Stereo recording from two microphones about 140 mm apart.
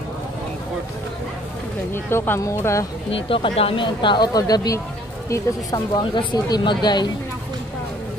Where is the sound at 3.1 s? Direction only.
40° left (ahead or behind).